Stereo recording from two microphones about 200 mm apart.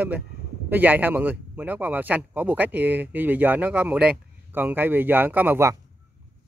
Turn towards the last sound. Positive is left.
turn(degrees=-10)  # may be behind; listen again after turning